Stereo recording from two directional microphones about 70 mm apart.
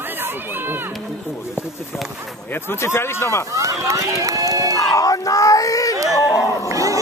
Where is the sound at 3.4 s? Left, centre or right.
Right.